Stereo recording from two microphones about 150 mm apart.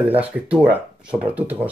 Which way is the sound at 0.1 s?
10° right (ahead or behind).